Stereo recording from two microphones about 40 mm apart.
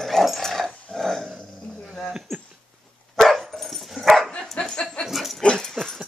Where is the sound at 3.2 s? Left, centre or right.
Centre.